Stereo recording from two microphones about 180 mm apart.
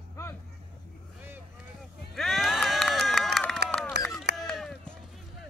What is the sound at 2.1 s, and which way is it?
Run, centre (ahead or behind).